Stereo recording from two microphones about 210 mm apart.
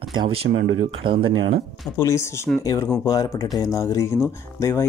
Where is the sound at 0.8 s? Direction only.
25° right (ahead or behind).